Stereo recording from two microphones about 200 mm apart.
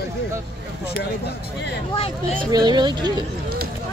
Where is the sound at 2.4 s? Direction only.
20° right (ahead or behind).